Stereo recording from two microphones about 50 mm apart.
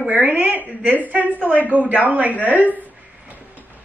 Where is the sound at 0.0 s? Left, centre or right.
Right.